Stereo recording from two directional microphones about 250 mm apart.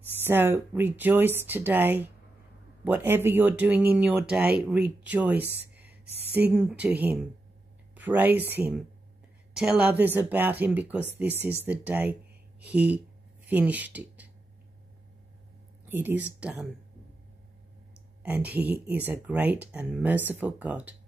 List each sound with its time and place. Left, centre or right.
0.0 s speech: centre
5.4 s speech: right
6.5 s speech: centre
15.9 s speech: centre
18.2 s speech: centre